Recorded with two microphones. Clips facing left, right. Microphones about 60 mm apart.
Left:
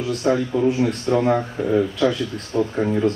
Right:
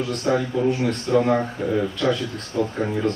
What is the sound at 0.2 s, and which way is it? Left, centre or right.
Speech, left.